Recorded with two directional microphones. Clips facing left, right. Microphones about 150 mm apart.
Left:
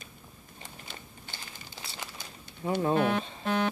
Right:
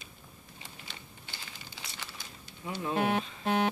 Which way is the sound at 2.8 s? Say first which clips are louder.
Left 2 dB; 35° left (ahead or behind).